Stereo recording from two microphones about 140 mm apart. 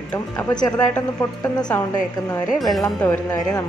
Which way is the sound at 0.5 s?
30° left (ahead or behind).